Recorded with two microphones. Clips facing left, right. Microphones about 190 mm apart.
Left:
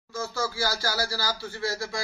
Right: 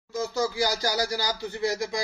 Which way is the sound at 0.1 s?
15° right (ahead or behind).